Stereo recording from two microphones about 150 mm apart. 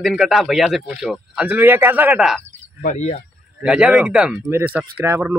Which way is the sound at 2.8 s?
55° left (ahead or behind).